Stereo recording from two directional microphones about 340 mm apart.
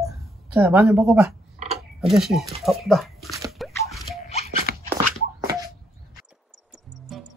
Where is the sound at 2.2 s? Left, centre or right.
Centre.